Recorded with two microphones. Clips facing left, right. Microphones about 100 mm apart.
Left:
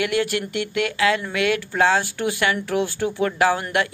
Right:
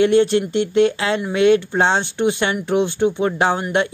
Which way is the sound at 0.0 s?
25° right (ahead or behind).